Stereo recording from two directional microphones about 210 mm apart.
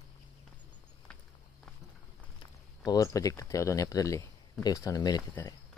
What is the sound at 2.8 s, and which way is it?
Speech, 15° left (ahead or behind).